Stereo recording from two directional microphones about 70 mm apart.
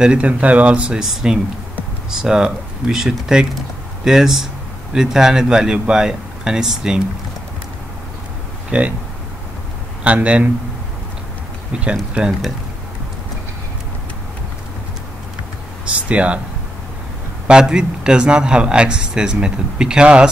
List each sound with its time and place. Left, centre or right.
0.0 s speech: centre
10.0 s speech: centre
11.7 s speech: centre
15.8 s speech: centre
17.5 s speech: centre